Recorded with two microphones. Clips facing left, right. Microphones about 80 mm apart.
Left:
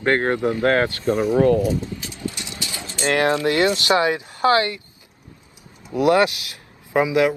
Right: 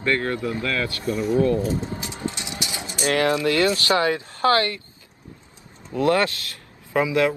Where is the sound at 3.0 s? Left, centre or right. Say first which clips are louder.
Left 2 dB; left.